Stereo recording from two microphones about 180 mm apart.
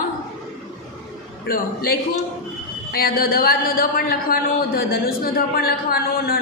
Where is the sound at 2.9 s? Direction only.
55° left (ahead or behind).